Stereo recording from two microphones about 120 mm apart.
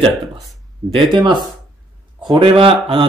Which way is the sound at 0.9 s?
40° right (ahead or behind).